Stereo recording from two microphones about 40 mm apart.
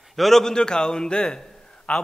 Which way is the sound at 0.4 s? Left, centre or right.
Centre.